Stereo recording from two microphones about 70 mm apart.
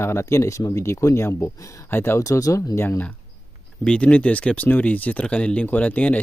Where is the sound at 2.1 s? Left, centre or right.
Left.